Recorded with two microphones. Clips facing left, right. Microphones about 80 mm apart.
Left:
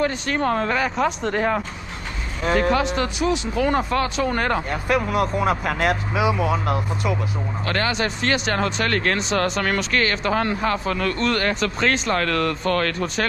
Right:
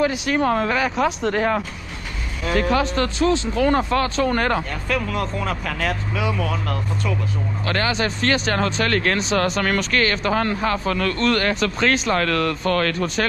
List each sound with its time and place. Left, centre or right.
0.0 s speech: centre
2.7 s speech: centre
4.8 s speech: centre
7.6 s speech: centre